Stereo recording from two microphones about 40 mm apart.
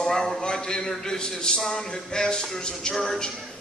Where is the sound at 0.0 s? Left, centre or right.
Centre.